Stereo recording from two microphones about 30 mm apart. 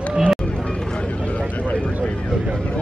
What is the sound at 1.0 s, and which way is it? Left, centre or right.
Vehicle, left.